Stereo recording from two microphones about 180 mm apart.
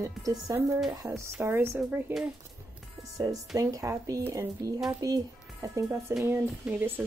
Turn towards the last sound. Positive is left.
turn(degrees=-10)  # may be behind; listen again after turning